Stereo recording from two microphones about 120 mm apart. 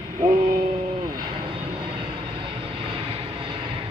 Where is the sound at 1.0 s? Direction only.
40° right (ahead or behind).